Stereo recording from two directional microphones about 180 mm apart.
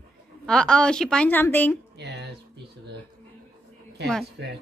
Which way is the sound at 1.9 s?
65° right (ahead or behind).